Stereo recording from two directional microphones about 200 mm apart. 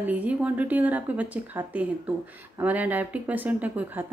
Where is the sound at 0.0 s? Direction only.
5° right (ahead or behind).